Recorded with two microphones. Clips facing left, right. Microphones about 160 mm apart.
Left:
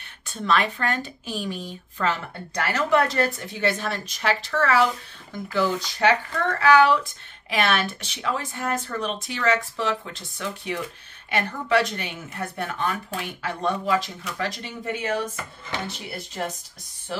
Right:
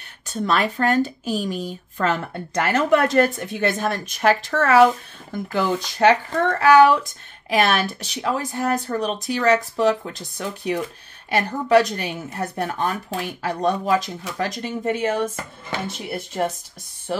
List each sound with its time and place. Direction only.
0.3 s speech: 40° right (ahead or behind)